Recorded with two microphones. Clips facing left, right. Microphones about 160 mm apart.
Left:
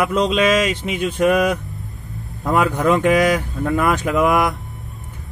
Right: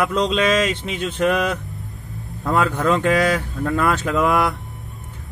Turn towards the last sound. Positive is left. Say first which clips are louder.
# left 1 dB
turn(degrees=0)  # may be behind; listen again after turning